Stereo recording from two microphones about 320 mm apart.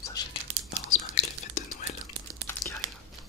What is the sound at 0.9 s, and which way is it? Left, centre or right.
Whispering, left.